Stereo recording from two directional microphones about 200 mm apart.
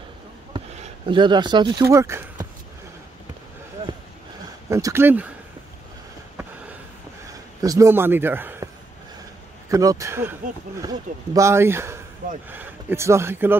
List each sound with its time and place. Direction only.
1.0 s speech: 25° right (ahead or behind)
4.6 s speech: 15° right (ahead or behind)
7.6 s speech: 15° right (ahead or behind)
9.7 s speech: 15° right (ahead or behind)